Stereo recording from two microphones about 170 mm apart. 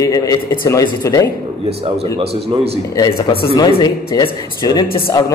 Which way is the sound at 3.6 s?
25° left (ahead or behind).